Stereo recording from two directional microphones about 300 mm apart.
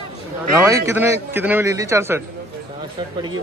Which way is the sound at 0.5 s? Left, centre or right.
Centre.